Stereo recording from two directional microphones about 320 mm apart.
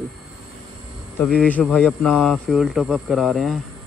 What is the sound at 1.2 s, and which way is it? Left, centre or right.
Speech, centre.